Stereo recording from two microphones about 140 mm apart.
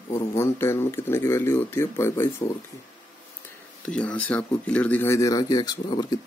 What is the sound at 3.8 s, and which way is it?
Speech, 10° left (ahead or behind).